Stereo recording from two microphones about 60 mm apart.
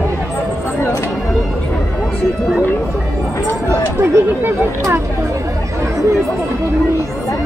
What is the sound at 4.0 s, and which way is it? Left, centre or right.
Speech, right.